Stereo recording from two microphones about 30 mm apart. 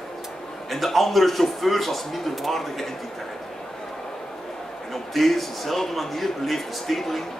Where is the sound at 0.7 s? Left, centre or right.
Centre.